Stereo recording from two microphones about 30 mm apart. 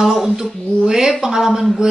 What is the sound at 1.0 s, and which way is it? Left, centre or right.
Speech, right.